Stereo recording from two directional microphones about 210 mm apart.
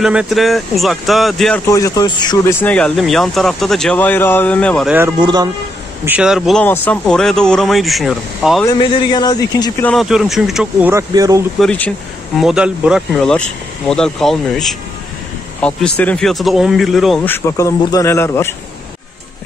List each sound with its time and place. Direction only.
0.0 s speech: 5° right (ahead or behind)
1.7 s speech: 15° left (ahead or behind)
2.6 s speech: 5° left (ahead or behind)
5.2 s speech: 20° right (ahead or behind)
6.0 s speech: 5° right (ahead or behind)
8.6 s speech: 20° left (ahead or behind)
9.8 s speech: centre (ahead or behind); by 11.4 s 15° right (ahead or behind)
11.6 s speech: 5° left (ahead or behind)